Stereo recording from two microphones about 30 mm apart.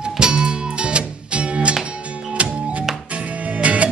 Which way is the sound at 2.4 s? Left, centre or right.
Right.